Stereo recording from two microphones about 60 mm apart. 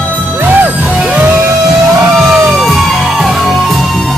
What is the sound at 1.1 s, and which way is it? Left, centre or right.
Music, right.